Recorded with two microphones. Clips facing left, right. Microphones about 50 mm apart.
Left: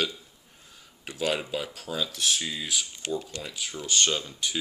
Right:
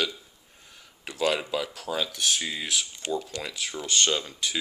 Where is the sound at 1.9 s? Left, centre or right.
Right.